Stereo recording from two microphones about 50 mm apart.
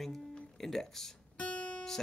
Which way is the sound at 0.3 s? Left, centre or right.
Centre.